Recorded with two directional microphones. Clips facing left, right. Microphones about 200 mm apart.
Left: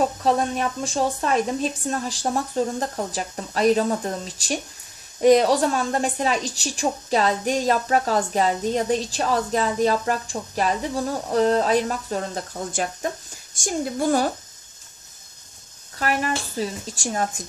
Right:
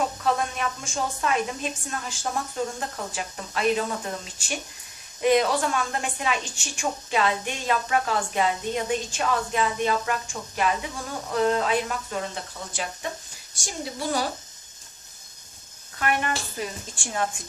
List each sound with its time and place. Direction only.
0.2 s a woman's voice: 35° left (ahead or behind)
16.0 s a woman's voice: 35° left (ahead or behind)